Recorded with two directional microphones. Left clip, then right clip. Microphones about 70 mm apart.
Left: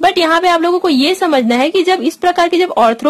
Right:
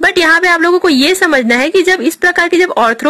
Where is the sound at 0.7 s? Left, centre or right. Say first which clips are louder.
Right 3 dB; centre.